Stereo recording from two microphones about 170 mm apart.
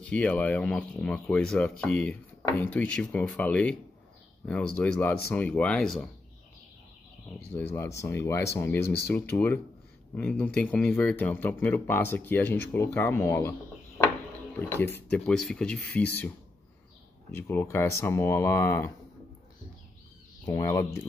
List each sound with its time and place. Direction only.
0.0 s speech: 10° left (ahead or behind)
7.5 s speech: 15° left (ahead or behind)
20.4 s speech: 20° left (ahead or behind)